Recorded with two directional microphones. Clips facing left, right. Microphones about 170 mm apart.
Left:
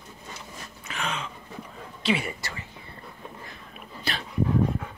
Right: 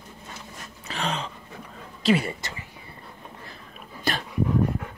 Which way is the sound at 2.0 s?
35° right (ahead or behind).